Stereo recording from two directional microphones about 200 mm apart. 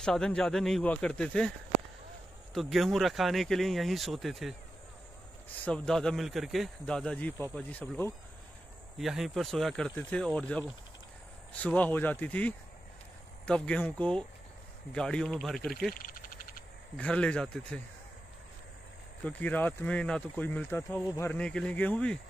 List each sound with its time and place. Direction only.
0.0 s speech: 5° left (ahead or behind)
2.5 s speech: centre (ahead or behind)
5.7 s speech: 5° left (ahead or behind)
15.9 s a sound: 45° left (ahead or behind)
16.9 s speech: 5° left (ahead or behind)
19.2 s speech: 10° left (ahead or behind)